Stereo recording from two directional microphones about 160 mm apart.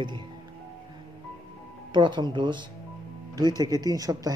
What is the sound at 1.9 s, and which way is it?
Speech, 30° right (ahead or behind).